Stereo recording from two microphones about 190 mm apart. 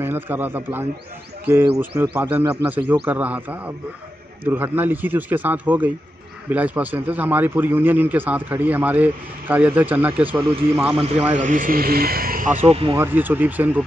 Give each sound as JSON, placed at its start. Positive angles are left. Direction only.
{"t": 0.0, "sound": "a man's voice", "side_deg": -10}
{"t": 10.9, "sound": "a man's voice", "side_deg": -35}
{"t": 11.3, "sound": "speech", "side_deg": -45}
{"t": 12.9, "sound": "a man's voice", "side_deg": -10}